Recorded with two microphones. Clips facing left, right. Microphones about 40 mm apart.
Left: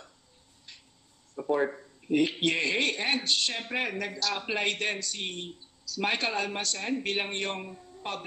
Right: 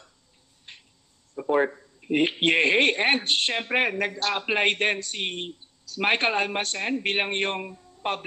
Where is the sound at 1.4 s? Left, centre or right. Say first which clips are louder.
Right 3 dB; right.